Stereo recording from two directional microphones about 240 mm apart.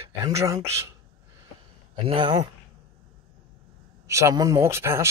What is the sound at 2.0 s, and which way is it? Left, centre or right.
Speech, centre.